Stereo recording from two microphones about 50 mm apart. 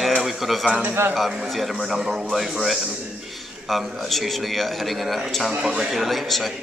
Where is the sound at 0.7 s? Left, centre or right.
Right.